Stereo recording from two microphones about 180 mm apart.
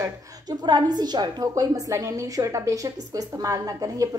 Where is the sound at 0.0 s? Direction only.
20° right (ahead or behind).